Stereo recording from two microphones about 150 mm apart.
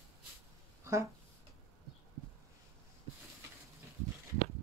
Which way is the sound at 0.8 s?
20° right (ahead or behind).